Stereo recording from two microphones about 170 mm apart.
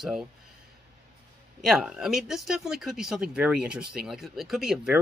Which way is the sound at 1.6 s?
5° right (ahead or behind).